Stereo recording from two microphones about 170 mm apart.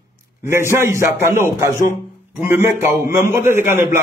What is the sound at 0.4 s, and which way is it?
A man's voice, 15° right (ahead or behind).